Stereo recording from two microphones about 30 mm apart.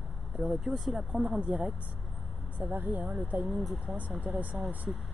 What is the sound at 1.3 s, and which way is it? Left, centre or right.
Speech, right.